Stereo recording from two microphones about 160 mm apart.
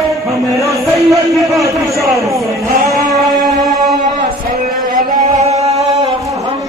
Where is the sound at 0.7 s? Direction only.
20° right (ahead or behind).